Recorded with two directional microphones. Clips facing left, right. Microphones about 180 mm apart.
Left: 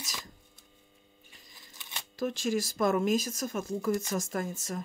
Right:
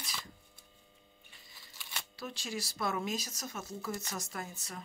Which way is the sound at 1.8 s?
20° left (ahead or behind).